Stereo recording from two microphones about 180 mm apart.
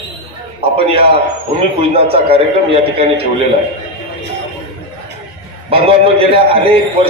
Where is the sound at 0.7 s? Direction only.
30° right (ahead or behind).